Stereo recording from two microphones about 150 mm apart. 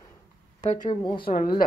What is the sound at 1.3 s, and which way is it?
Speech, 75° left (ahead or behind).